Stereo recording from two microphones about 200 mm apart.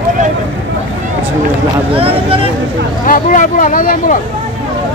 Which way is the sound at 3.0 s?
40° left (ahead or behind).